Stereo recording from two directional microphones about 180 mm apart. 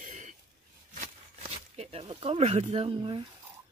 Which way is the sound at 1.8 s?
35° right (ahead or behind).